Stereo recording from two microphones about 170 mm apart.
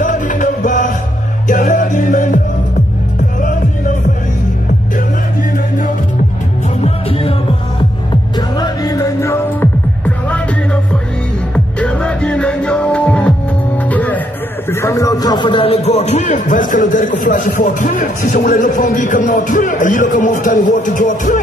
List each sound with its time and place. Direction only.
0.0 s music: 50° left (ahead or behind)
6.8 s music: 35° left (ahead or behind)
8.4 s music: 25° left (ahead or behind)
11.5 s music: 5° left (ahead or behind); by 21.4 s 50° left (ahead or behind)